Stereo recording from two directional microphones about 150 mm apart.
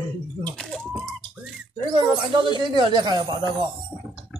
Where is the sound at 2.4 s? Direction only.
30° right (ahead or behind).